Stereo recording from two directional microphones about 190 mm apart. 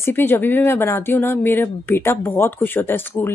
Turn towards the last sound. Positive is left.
turn(degrees=10)  # may be behind; listen again after turning